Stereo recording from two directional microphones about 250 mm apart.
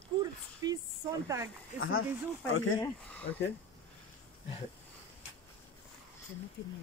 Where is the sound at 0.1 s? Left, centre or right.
Centre.